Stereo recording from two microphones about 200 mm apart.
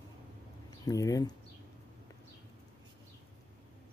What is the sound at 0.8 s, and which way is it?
Speech, 15° left (ahead or behind).